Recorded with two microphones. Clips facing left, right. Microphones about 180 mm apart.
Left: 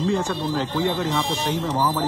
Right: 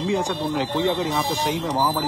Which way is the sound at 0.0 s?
15° right (ahead or behind).